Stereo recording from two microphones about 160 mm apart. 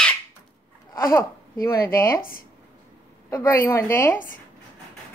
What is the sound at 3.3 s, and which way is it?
Speech, 15° left (ahead or behind).